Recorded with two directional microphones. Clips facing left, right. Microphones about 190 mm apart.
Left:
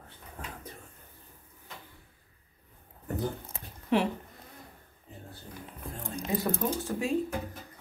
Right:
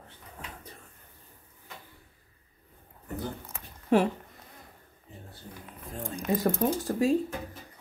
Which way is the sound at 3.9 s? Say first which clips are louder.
Right 4 dB; 45° right (ahead or behind).